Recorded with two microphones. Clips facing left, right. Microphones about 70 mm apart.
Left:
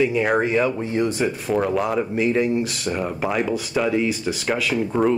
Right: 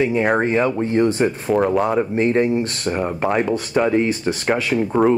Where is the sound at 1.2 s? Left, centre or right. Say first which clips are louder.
Right 4 dB; centre.